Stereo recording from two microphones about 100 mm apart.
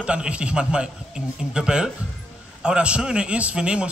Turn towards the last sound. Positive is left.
turn(degrees=-10)  # may be behind; listen again after turning